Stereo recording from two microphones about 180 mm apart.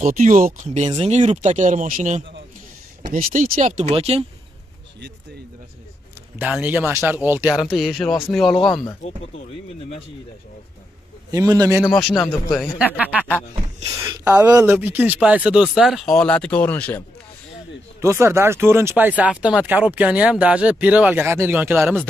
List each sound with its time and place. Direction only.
0.0 s speech: 45° right (ahead or behind)
0.8 s speech: 35° right (ahead or behind)
6.3 s speech: 10° right (ahead or behind)
8.5 s a man's voice: 25° left (ahead or behind)
11.3 s speech: 20° right (ahead or behind)
11.9 s speech: centre (ahead or behind)
12.2 s a man's voice: 20° left (ahead or behind)
12.7 s speech: 10° right (ahead or behind); by 17.0 s 10° left (ahead or behind)
18.0 s speech: 15° right (ahead or behind)